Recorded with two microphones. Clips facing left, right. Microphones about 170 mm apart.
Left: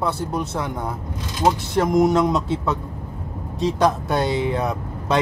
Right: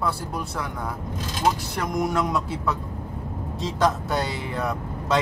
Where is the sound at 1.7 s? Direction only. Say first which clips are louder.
Left 8 dB; 25° left (ahead or behind).